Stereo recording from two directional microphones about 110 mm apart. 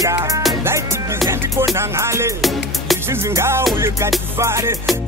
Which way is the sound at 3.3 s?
25° right (ahead or behind).